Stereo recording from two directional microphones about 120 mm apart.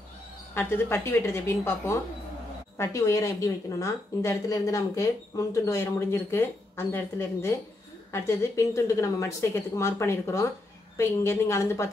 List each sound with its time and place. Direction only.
0.6 s a woman's voice: 20° left (ahead or behind)